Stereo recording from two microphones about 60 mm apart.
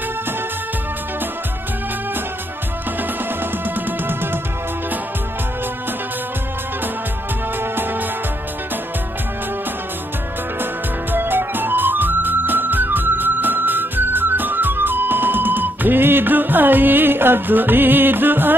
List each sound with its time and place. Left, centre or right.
10.6 s music: right